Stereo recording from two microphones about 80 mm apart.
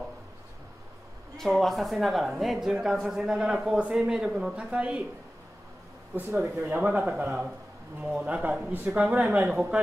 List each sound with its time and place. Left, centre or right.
1.3 s speech: centre
6.1 s speech: centre